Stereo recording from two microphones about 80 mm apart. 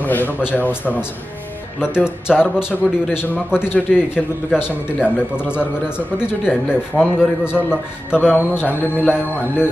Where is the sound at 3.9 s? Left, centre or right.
Centre.